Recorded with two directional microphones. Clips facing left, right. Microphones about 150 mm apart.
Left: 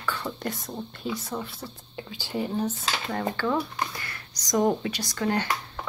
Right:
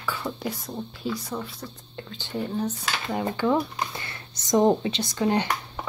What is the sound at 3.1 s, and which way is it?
Speech, 15° right (ahead or behind).